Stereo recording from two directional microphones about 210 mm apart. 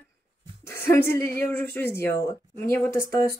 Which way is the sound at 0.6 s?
10° left (ahead or behind).